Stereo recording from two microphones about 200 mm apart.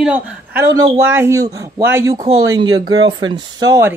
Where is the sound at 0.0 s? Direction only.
5° right (ahead or behind).